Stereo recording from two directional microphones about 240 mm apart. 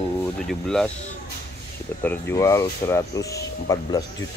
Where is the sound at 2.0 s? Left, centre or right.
Centre.